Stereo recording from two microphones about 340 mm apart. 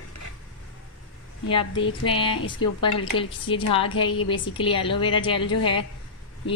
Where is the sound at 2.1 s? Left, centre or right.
Centre.